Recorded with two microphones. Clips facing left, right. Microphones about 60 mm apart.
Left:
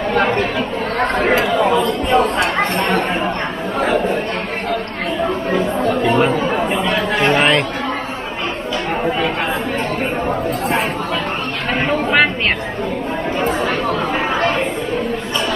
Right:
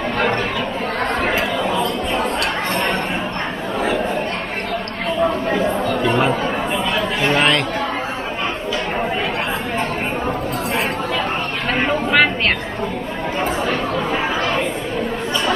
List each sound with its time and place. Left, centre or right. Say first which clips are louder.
2.0 s chatter: left 6 dB; left
6.0 s chatter: left 2 dB; centre
6.9 s chatter: left 3 dB; left
7.3 s chatter: left 1 dB; centre
11.8 s a sound: left 1 dB; centre